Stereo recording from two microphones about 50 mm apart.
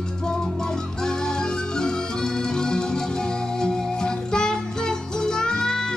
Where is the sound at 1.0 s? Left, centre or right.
Centre.